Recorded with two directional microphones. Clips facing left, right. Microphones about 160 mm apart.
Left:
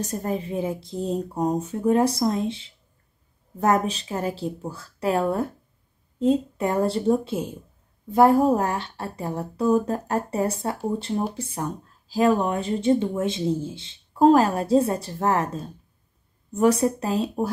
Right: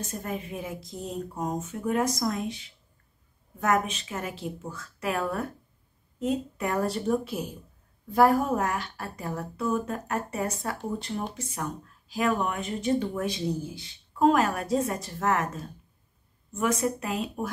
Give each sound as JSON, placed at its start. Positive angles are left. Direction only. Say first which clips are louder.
{"t": 0.0, "sound": "speech", "louder": "left 7 dB", "side_deg": 35}